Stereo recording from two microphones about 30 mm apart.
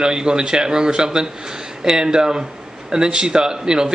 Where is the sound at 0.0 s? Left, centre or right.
Right.